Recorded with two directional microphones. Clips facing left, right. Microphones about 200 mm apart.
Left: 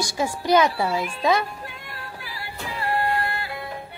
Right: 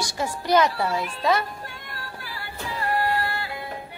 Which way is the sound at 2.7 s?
25° left (ahead or behind).